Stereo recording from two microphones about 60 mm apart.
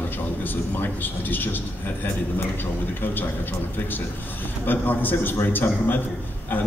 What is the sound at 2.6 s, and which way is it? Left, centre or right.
Speech, left.